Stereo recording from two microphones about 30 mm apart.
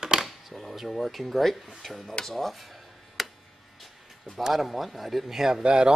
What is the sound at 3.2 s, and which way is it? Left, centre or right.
Tick, centre.